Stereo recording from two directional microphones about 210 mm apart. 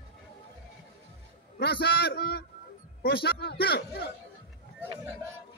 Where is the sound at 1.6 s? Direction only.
50° left (ahead or behind).